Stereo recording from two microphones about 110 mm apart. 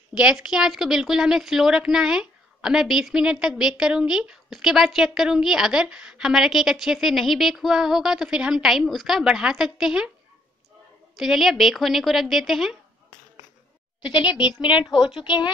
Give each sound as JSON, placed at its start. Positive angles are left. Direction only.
{"t": 0.1, "sound": "a woman's voice", "side_deg": -5}
{"t": 11.1, "sound": "a woman's voice", "side_deg": 0}
{"t": 14.3, "sound": "a woman's voice", "side_deg": -5}
{"t": 15.0, "sound": "a woman's voice", "side_deg": 45}